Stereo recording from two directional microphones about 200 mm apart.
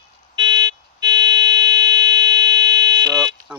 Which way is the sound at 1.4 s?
60° right (ahead or behind).